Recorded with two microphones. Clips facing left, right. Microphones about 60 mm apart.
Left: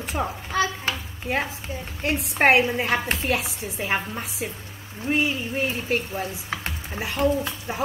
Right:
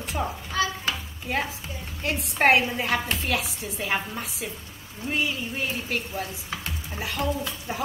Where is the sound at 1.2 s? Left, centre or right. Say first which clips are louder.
Left 2 dB; centre.